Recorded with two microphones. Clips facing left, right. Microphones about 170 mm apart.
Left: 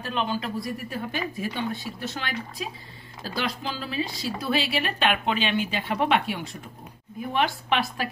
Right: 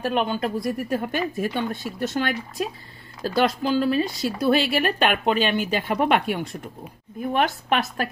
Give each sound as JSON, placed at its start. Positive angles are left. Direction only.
{"t": 0.0, "sound": "a woman's voice", "side_deg": -55}